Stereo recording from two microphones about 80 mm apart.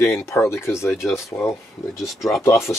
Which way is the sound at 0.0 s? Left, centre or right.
Left.